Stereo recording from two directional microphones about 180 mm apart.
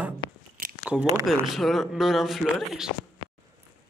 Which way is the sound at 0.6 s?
50° right (ahead or behind).